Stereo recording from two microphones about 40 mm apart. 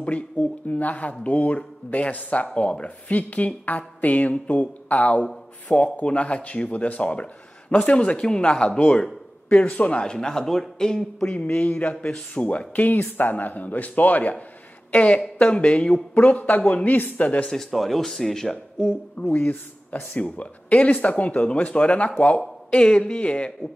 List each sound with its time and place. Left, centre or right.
0.4 s a woman's voice: left
9.5 s a woman's voice: left
10.0 s speech: centre
11.2 s a woman's voice: left
16.2 s a woman's voice: left
17.5 s speech: centre
19.3 s speech: left
20.3 s a woman's voice: left